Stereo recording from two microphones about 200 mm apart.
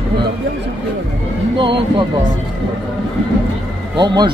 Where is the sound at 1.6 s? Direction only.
25° right (ahead or behind).